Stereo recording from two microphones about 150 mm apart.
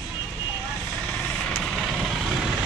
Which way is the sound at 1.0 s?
5° left (ahead or behind).